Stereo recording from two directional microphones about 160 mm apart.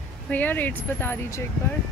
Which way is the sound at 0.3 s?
10° left (ahead or behind).